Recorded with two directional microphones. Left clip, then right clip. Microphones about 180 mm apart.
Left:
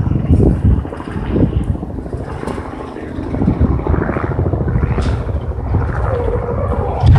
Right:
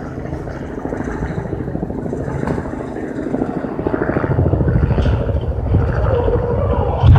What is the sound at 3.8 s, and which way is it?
Vehicle, 30° right (ahead or behind).